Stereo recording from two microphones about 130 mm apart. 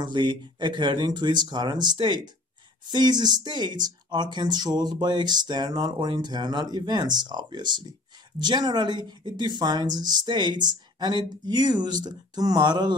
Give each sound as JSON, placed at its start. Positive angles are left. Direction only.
{"t": 0.0, "sound": "speech", "side_deg": -35}